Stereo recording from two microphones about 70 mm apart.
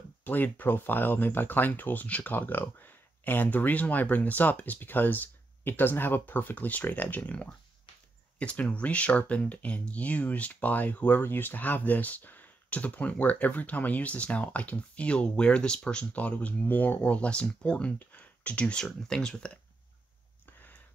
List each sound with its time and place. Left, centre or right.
0.2 s speech: left